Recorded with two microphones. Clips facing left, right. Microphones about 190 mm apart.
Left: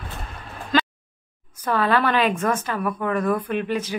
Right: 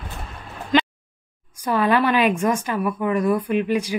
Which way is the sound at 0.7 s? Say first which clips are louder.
Right 3 dB; 20° right (ahead or behind).